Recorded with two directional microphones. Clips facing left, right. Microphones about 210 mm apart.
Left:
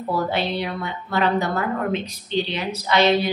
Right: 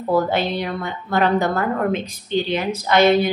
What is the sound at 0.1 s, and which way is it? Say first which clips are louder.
A woman's voice: right 4 dB; 45° right (ahead or behind).